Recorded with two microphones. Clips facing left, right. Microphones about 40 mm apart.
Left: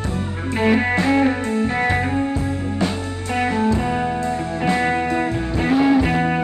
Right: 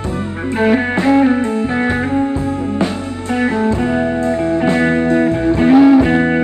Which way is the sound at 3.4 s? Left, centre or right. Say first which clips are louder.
Right 3 dB; right.